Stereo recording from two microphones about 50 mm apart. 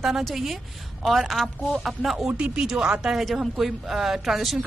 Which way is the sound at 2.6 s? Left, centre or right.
Centre.